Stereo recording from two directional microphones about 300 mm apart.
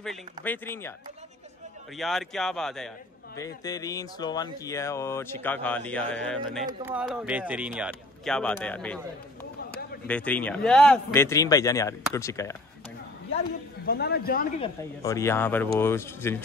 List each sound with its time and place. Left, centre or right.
0.0 s speech: centre
2.0 s speech: centre
13.8 s a man's voice: left
14.6 s speech: centre